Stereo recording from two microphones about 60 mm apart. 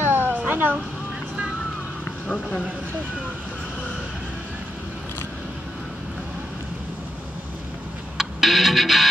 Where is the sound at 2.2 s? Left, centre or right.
Centre.